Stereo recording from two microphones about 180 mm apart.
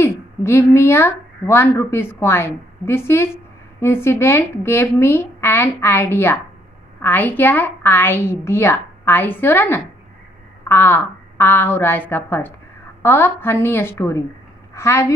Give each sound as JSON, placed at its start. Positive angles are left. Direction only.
{"t": 0.0, "sound": "a woman's voice", "side_deg": 15}